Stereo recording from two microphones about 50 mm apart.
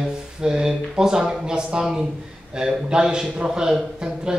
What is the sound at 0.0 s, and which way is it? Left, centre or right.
Speech, centre.